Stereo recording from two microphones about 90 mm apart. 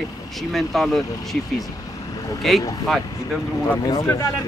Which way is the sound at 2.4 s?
Centre (ahead or behind).